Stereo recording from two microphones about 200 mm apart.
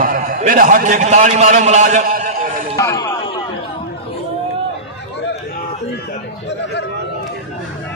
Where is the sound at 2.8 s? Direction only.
15° left (ahead or behind).